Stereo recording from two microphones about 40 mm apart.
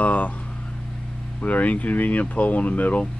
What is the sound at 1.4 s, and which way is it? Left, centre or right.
Speech, left.